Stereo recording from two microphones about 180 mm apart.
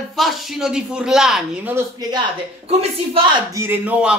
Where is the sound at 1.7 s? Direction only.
25° right (ahead or behind).